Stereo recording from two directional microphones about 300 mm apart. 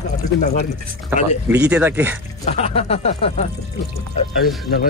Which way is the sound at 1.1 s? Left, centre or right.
Centre.